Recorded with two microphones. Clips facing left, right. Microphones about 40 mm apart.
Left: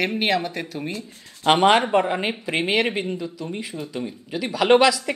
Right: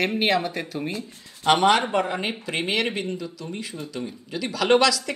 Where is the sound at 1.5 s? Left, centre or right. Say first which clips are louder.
Left 2 dB; left.